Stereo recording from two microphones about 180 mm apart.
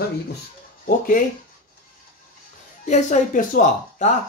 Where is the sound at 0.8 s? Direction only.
55° left (ahead or behind).